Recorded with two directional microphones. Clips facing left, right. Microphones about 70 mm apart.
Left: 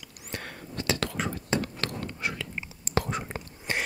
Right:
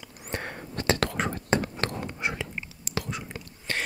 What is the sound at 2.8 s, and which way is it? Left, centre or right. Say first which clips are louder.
Whispering: left 6 dB; left.